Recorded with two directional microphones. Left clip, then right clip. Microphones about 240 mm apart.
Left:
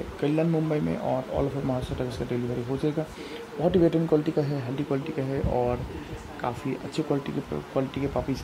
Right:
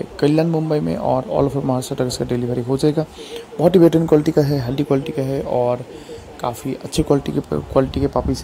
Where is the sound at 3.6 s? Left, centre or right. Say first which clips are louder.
Right 10 dB; right.